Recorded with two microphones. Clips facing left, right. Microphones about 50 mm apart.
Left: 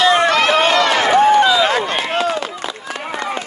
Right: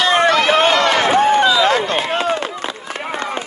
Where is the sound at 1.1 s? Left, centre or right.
Right.